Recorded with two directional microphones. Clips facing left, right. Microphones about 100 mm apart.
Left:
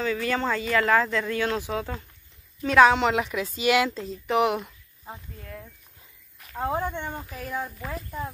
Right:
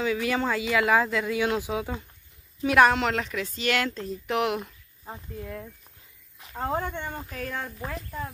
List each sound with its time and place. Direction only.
0.0 s a woman's voice: 10° right (ahead or behind); by 4.0 s 10° left (ahead or behind)
4.0 s speech: centre (ahead or behind)
5.4 s speech: 15° right (ahead or behind)
6.5 s speech: 10° left (ahead or behind)